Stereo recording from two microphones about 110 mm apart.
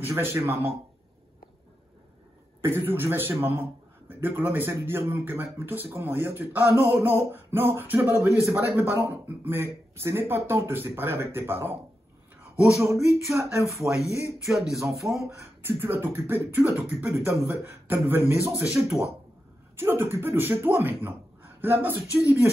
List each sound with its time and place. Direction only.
0.0 s a man's voice: 20° right (ahead or behind)
2.6 s a man's voice: 20° right (ahead or behind)
12.8 s a man's voice: 25° right (ahead or behind)
14.4 s a sound: centre (ahead or behind)
15.3 s a man's voice: 20° right (ahead or behind)